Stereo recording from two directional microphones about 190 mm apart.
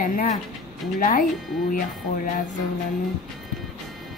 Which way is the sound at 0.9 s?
50° left (ahead or behind).